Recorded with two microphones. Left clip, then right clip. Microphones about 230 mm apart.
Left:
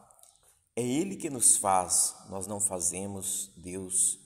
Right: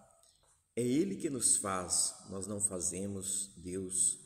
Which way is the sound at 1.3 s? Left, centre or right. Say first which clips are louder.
Left 9 dB; centre.